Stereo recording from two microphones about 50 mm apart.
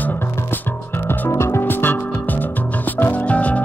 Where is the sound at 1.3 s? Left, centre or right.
Left.